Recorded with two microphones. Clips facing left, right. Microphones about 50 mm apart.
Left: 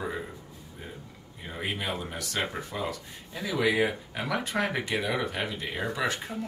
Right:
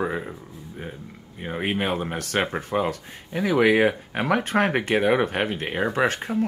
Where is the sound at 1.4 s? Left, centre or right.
Right.